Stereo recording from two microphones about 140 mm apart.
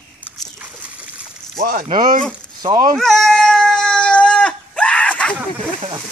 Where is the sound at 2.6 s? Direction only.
30° right (ahead or behind).